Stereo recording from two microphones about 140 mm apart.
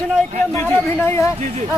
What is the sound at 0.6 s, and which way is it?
Speech, 15° left (ahead or behind).